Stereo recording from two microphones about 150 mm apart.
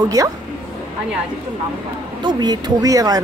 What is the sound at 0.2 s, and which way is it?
Speech, 20° right (ahead or behind).